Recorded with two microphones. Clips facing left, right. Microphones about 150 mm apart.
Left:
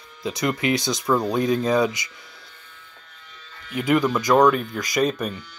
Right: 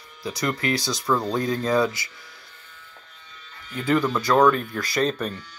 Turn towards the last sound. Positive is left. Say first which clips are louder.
# left 2 dB
turn(degrees=10)  # may be behind; listen again after turning